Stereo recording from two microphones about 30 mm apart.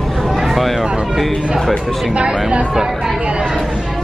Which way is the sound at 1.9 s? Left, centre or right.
Centre.